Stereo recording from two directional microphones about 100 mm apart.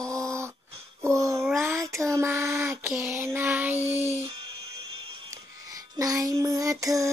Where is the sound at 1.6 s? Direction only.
30° right (ahead or behind).